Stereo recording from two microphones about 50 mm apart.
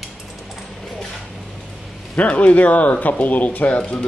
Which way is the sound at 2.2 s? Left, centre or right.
Left.